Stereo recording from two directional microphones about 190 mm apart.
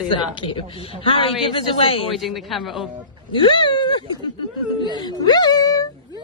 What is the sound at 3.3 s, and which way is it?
Speech, 25° left (ahead or behind).